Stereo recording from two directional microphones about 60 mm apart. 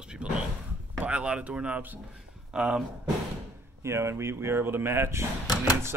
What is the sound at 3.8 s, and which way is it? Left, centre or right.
Speech, right.